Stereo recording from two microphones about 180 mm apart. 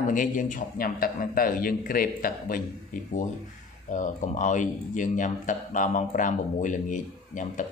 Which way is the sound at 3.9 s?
45° left (ahead or behind).